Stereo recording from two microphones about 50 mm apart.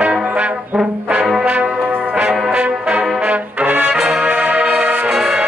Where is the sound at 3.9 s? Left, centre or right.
Centre.